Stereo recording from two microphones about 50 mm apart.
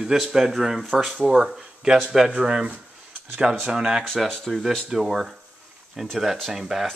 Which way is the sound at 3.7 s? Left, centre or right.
Centre.